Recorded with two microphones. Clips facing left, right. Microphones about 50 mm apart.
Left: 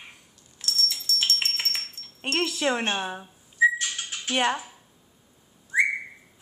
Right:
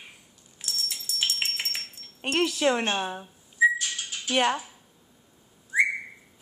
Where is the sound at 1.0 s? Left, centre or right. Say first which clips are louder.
Even; centre.